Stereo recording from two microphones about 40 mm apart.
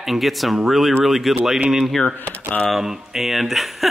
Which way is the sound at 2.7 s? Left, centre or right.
Centre.